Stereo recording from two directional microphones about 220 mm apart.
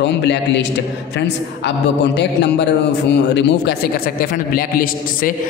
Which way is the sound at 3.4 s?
45° left (ahead or behind).